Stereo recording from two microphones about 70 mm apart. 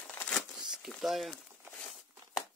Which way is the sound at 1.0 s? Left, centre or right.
Centre.